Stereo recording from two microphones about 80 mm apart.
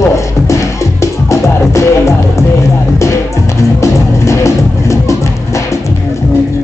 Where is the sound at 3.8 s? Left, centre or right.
Left.